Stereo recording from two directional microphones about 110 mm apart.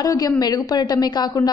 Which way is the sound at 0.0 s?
35° left (ahead or behind).